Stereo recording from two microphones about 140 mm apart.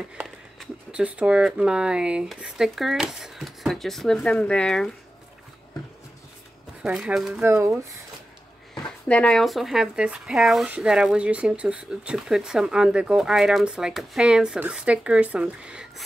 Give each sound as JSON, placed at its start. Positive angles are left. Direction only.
{"t": 0.1, "sound": "speech", "side_deg": -5}
{"t": 6.8, "sound": "speech", "side_deg": -5}
{"t": 7.4, "sound": "speech", "side_deg": -20}
{"t": 8.8, "sound": "speech", "side_deg": 5}